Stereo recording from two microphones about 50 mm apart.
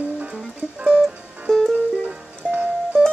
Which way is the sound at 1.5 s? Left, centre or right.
Centre.